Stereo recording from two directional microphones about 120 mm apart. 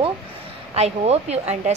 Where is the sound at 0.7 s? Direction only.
60° right (ahead or behind).